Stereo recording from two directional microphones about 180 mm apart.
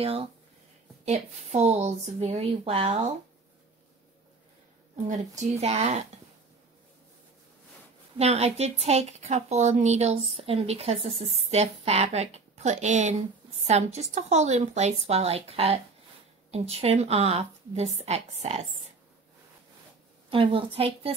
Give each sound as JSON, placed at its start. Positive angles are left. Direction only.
{"t": 0.0, "sound": "a woman's voice", "side_deg": -30}
{"t": 4.9, "sound": "a woman's voice", "side_deg": -40}
{"t": 8.2, "sound": "a woman's voice", "side_deg": -35}
{"t": 20.2, "sound": "a woman's voice", "side_deg": -30}